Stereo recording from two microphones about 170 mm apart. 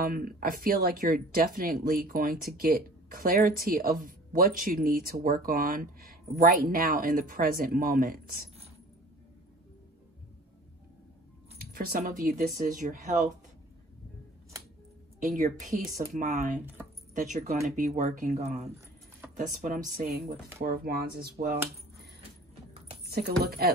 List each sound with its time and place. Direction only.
0.0 s speech: 60° right (ahead or behind)
11.5 s a sound: 60° right (ahead or behind)
12.6 s speech: 50° right (ahead or behind)
15.1 s speech: 45° right (ahead or behind)
19.6 s speech: 50° right (ahead or behind)
23.0 s speech: 70° right (ahead or behind)